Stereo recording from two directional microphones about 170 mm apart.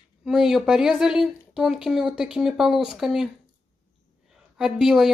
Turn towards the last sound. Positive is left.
turn(degrees=0)  # may be behind; listen again after turning